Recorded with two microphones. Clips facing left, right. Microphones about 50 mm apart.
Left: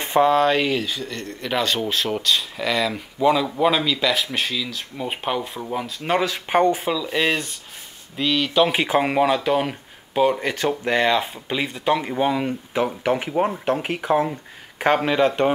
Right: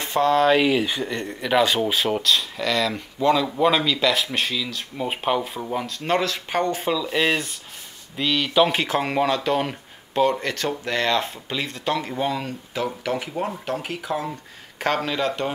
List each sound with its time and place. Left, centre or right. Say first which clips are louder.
0.0 s a sound: left 4 dB; left
0.3 s speech: right 1 dB; centre
0.8 s speech: right 3 dB; centre
1.4 s speech: right 3 dB; centre
6.8 s speech: even; centre
8.7 s speech: left 3 dB; centre; by 14.3 s left
14.8 s speech: left 5 dB; centre